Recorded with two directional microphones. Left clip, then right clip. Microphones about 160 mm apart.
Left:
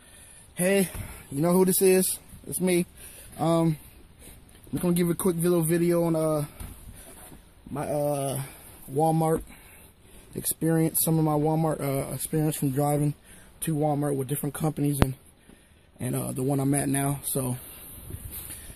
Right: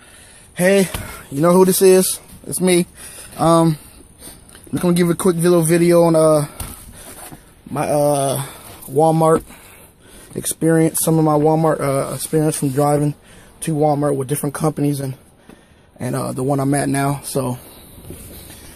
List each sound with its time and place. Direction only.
0.6 s speech: 5° left (ahead or behind)
3.3 s speech: centre (ahead or behind)
4.7 s speech: 5° left (ahead or behind)
7.7 s speech: 5° right (ahead or behind); by 9.3 s 10° left (ahead or behind)
10.3 s speech: 10° left (ahead or behind)